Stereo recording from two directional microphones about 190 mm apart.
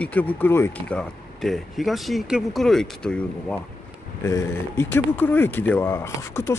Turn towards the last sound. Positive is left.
turn(degrees=15)  # may be behind; listen again after turning